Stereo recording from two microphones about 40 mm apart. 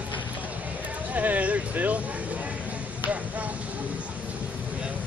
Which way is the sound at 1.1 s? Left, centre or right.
Right.